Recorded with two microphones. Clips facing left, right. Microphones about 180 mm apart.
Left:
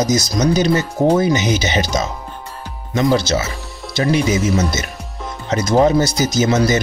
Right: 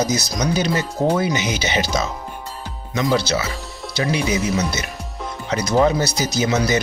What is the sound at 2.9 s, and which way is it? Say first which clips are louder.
Speech: left 4 dB; 45° left (ahead or behind).